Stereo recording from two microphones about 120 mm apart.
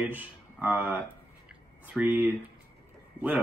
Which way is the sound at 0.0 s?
15° right (ahead or behind).